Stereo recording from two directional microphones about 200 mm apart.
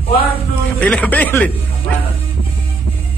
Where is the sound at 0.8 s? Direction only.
5° left (ahead or behind).